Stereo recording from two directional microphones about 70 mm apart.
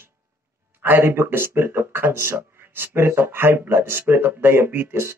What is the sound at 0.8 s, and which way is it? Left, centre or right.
Speech, right.